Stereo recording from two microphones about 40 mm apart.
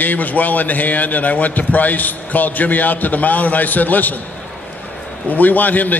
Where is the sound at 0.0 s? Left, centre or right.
Left.